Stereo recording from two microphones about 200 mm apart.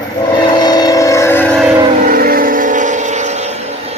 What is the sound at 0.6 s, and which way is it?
Train, 20° left (ahead or behind).